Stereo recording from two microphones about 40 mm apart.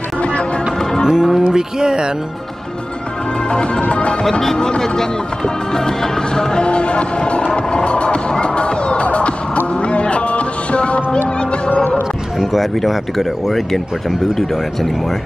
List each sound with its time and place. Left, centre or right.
0.2 s music: left
1.0 s music: centre
1.8 s speech: centre
3.4 s music: left
4.2 s speech: centre
4.6 s music: centre
12.5 s speech: centre